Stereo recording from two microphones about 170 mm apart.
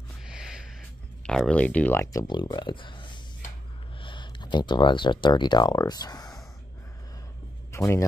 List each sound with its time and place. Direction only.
0.3 s music: 5° right (ahead or behind)
1.2 s speech: 5° left (ahead or behind); by 6.4 s 20° left (ahead or behind)
7.7 s speech: 15° left (ahead or behind)